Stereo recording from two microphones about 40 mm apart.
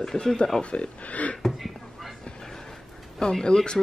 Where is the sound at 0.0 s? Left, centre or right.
Centre.